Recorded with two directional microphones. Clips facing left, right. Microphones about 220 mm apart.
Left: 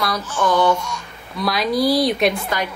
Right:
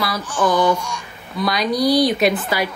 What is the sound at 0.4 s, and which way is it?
Speech, 10° right (ahead or behind).